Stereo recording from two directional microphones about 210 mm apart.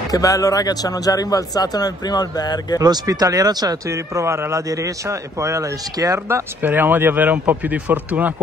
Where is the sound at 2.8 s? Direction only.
20° right (ahead or behind).